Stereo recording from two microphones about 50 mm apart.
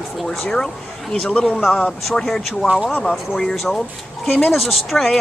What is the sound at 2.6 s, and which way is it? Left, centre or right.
Speech, centre.